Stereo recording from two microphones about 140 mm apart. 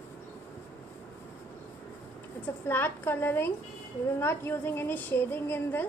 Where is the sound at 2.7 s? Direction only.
15° left (ahead or behind).